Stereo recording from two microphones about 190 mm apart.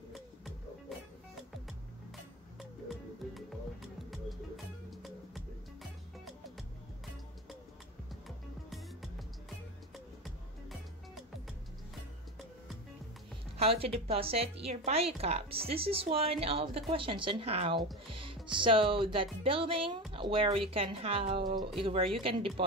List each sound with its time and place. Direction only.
3.3 s music: centre (ahead or behind)
8.6 s music: centre (ahead or behind)
13.6 s a woman's voice: 30° right (ahead or behind)